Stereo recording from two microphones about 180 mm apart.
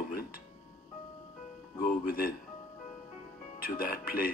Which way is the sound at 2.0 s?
55° left (ahead or behind).